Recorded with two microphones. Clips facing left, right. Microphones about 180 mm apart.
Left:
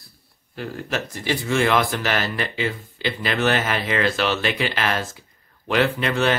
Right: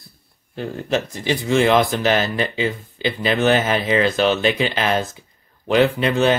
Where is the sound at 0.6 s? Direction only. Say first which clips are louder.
Right 5 dB; 20° right (ahead or behind).